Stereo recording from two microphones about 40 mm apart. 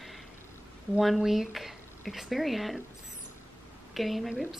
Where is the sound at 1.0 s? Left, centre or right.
Centre.